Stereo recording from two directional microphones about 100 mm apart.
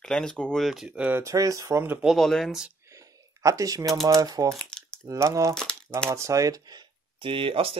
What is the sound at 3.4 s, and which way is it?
Speech, 35° right (ahead or behind).